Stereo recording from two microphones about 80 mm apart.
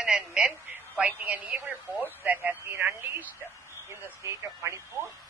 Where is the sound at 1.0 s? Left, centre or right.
Right.